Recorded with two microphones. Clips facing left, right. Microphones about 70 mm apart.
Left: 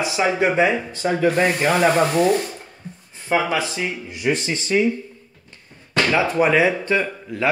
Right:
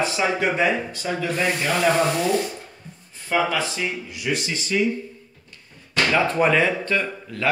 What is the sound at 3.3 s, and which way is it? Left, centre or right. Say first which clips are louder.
Speech: left 2 dB; centre.